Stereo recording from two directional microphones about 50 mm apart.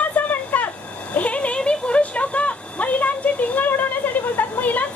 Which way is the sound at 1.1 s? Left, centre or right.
Left.